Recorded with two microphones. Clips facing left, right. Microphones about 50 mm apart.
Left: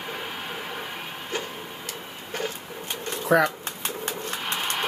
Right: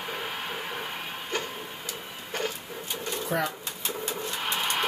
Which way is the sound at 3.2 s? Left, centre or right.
Left.